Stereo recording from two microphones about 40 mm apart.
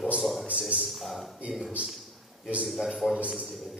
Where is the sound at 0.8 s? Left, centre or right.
Centre.